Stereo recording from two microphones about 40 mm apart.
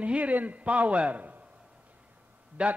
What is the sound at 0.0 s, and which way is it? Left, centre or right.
A man's voice, right.